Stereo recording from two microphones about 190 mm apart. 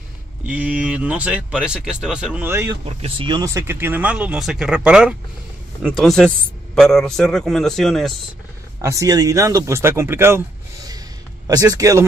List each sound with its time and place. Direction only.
0.5 s a man's voice: 5° right (ahead or behind)
8.8 s speech: 15° right (ahead or behind)
11.4 s speech: 20° right (ahead or behind)